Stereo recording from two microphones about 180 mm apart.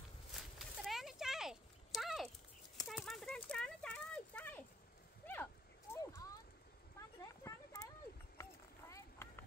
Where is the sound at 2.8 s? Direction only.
Centre (ahead or behind); by 7.9 s 20° left (ahead or behind).